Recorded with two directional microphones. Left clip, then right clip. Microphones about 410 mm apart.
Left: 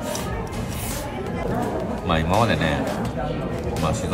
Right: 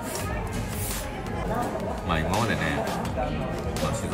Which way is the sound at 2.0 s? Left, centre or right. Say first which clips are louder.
Left 6 dB; centre.